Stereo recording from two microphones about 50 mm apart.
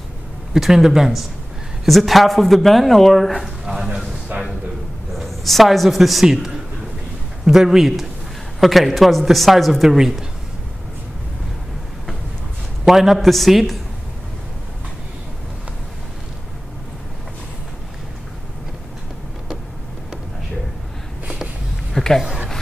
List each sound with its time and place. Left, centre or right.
0.5 s a man's voice: centre
4.3 s a sound: right
5.1 s a man's voice: centre
7.4 s a man's voice: centre
12.8 s speech: centre
21.9 s a sound: centre